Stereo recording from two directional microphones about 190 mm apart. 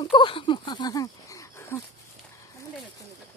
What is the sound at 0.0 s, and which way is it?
Speech, 25° left (ahead or behind).